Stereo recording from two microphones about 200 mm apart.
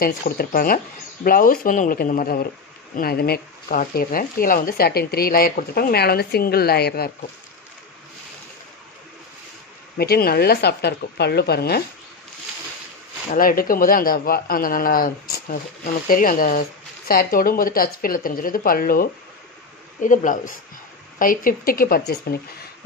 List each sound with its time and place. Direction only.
0.0 s speech: 45° left (ahead or behind)
9.9 s speech: 50° left (ahead or behind)
13.3 s speech: 45° left (ahead or behind)